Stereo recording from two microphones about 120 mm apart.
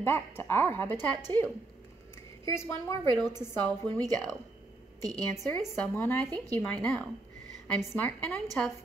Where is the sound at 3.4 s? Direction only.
20° left (ahead or behind).